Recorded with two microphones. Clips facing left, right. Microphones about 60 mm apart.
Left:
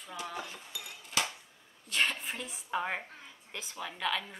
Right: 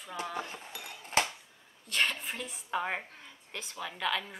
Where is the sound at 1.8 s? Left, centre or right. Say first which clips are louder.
Even; centre.